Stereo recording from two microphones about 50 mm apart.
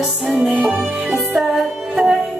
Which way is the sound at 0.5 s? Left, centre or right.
Right.